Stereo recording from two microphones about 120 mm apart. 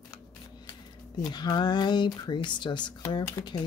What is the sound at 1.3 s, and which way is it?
Speech, 35° left (ahead or behind).